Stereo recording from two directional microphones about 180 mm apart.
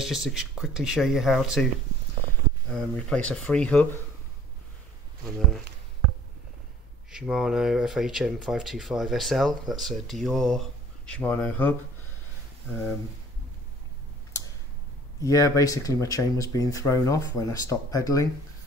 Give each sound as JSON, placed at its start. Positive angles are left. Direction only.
{"t": 0.0, "sound": "speech", "side_deg": 0}
{"t": 2.7, "sound": "speech", "side_deg": 5}
{"t": 7.1, "sound": "speech", "side_deg": -5}
{"t": 15.2, "sound": "speech", "side_deg": 20}